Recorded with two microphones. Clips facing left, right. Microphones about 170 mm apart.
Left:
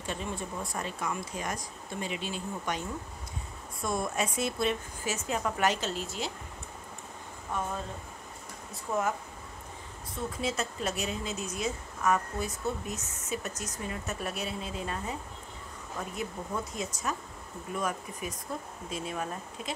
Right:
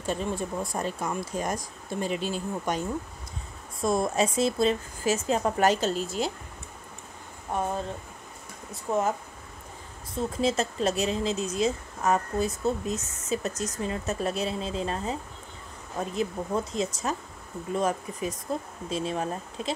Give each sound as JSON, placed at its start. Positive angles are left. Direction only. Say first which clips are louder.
{"t": 0.0, "sound": "speech", "louder": "right 6 dB", "side_deg": -40}
{"t": 3.8, "sound": "speech", "louder": "right 7 dB", "side_deg": -30}
{"t": 8.9, "sound": "speech", "louder": "right 4 dB", "side_deg": -25}
{"t": 10.1, "sound": "speech", "louder": "right 7 dB", "side_deg": -30}